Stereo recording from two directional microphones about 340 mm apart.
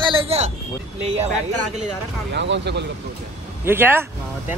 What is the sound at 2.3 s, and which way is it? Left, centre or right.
Speech, right.